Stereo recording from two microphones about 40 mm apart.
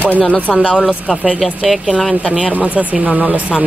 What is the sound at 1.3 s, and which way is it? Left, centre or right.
Speech, centre.